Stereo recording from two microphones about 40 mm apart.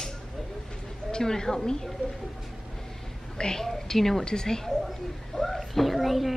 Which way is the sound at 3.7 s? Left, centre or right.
Centre.